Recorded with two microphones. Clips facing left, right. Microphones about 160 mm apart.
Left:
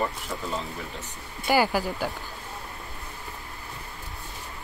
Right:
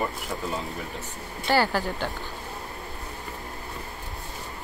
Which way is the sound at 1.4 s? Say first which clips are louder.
Left 1 dB; 10° left (ahead or behind).